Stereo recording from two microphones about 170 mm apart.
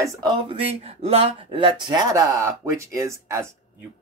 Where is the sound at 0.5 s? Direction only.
35° right (ahead or behind).